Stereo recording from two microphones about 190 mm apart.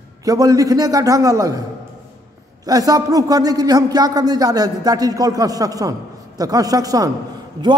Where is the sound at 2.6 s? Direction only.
20° right (ahead or behind).